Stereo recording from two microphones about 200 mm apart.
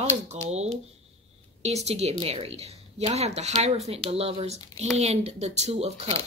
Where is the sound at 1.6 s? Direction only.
35° right (ahead or behind).